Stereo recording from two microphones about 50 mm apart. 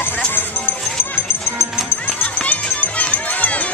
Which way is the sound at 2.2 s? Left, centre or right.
Left.